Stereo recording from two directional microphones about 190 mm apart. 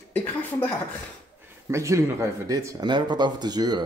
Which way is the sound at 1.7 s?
15° right (ahead or behind).